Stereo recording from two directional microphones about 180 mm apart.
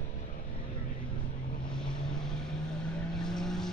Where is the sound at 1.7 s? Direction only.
5° left (ahead or behind).